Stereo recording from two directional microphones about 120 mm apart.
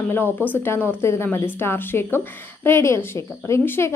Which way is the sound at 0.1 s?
15° left (ahead or behind).